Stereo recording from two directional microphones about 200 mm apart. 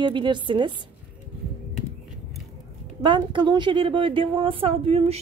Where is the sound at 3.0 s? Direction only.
25° right (ahead or behind).